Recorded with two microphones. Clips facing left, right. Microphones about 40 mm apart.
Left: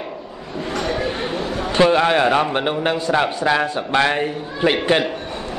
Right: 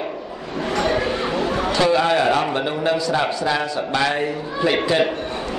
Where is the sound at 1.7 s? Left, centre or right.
Left.